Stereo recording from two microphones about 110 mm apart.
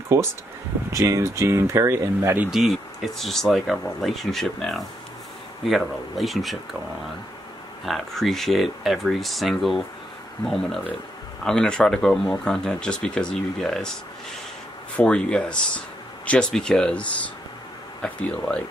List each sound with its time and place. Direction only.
0.1 s speech: 25° right (ahead or behind)
2.5 s speech: centre (ahead or behind)
7.8 s speech: centre (ahead or behind)
15.0 s speech: 10° left (ahead or behind)